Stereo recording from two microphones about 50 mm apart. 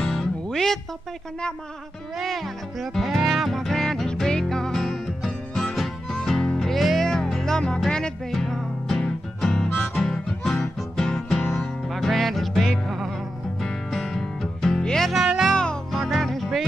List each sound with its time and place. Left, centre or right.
0.0 s music: centre
2.2 s speech: centre
3.3 s music: centre
8.3 s music: centre
14.8 s music: centre
15.1 s music: centre
15.5 s music: centre
15.9 s music: centre